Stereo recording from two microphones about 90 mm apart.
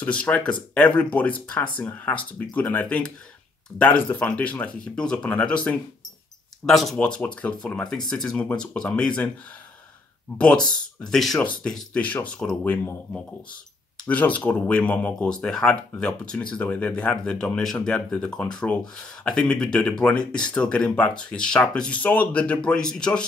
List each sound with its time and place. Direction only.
0.0 s speech: 15° left (ahead or behind)
6.6 s speech: centre (ahead or behind)
7.0 s speech: 10° left (ahead or behind)
10.3 s speech: 10° left (ahead or behind)
15.2 s speech: 5° left (ahead or behind)